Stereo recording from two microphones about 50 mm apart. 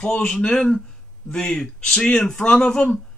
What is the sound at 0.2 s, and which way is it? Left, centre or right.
Speech, centre.